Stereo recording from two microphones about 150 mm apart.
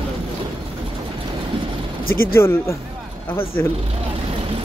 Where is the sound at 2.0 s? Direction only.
75° left (ahead or behind).